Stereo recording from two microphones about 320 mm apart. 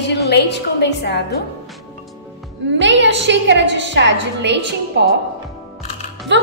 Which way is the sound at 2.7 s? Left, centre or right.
Right.